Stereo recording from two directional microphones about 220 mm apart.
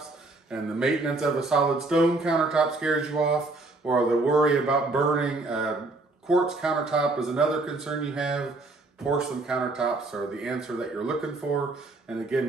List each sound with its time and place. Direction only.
0.5 s speech: 5° right (ahead or behind)